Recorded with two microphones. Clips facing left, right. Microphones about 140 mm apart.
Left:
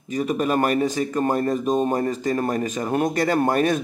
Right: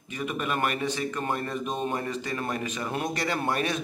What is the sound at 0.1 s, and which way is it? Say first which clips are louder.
A man's voice: left 8 dB; 40° left (ahead or behind).